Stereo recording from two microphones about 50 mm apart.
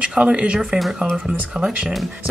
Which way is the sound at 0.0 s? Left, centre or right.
Centre.